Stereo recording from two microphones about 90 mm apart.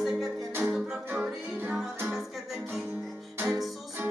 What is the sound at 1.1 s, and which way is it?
Music, 20° right (ahead or behind).